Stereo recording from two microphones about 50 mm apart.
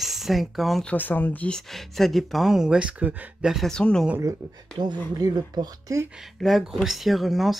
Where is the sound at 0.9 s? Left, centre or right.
Left.